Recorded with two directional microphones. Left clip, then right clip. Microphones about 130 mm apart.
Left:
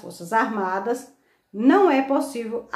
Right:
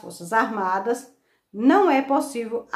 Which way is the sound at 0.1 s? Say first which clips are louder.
Even; 20° right (ahead or behind).